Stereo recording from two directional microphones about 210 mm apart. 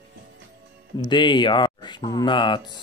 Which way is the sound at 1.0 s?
20° left (ahead or behind).